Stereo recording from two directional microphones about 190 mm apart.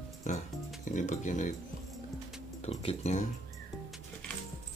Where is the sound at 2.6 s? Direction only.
30° left (ahead or behind).